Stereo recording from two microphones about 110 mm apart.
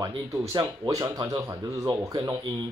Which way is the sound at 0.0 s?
30° right (ahead or behind).